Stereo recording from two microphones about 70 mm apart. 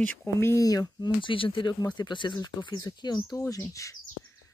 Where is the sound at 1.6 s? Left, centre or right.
Left.